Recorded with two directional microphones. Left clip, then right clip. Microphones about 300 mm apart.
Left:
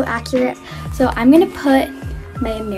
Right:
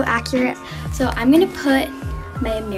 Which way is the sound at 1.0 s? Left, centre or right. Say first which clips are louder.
Left 4 dB; centre.